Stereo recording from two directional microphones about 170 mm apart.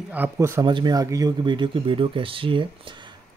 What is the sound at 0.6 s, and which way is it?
Speech, 25° right (ahead or behind).